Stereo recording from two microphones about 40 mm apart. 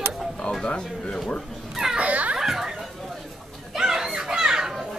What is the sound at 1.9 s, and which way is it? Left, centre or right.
Children playing, right.